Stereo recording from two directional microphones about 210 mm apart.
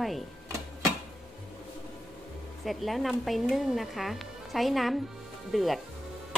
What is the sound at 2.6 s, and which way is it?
Speech, centre (ahead or behind).